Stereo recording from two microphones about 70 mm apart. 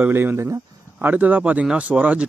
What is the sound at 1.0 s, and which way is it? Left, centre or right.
Speech, right.